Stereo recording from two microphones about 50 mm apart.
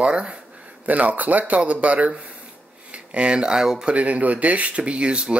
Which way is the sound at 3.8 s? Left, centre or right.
Right.